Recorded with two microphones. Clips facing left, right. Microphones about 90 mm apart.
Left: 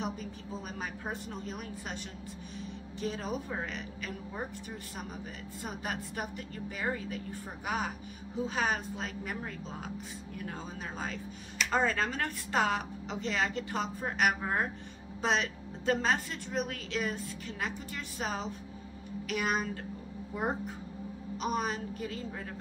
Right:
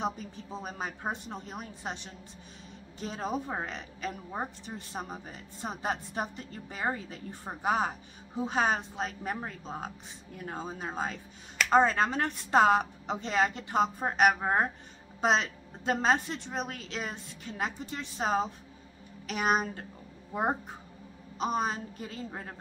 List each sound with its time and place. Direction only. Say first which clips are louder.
0.0 s speech: right 3 dB; 25° right (ahead or behind)
3.1 s speech: right 3 dB; 25° right (ahead or behind)